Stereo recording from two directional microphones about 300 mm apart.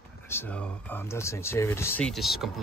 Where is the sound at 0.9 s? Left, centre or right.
Centre.